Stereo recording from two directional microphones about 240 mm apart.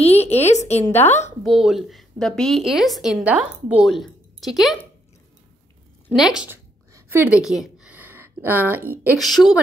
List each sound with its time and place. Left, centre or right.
0.0 s a woman's voice: left
1.4 s a woman's voice: centre
6.0 s a sound: centre
9.0 s a woman's voice: centre